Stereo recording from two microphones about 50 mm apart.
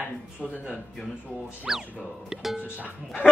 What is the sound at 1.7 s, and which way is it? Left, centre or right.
Speech, centre.